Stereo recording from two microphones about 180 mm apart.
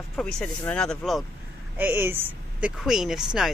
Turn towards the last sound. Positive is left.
turn(degrees=0)  # may be behind; listen again after turning